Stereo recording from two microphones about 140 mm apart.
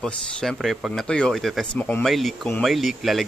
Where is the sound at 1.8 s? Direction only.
10° left (ahead or behind).